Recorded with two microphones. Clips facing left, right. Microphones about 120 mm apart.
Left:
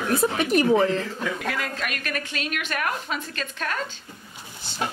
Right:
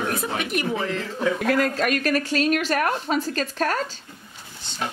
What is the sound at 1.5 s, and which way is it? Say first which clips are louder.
A woman's voice: right 9 dB; 40° right (ahead or behind).